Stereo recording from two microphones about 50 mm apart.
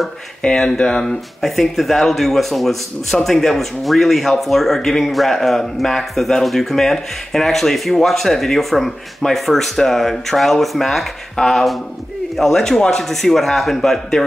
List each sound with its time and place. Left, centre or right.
0.4 s speech: centre
1.4 s speech: centre